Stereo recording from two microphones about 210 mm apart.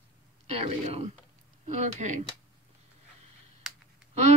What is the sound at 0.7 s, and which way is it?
Speech, 30° right (ahead or behind).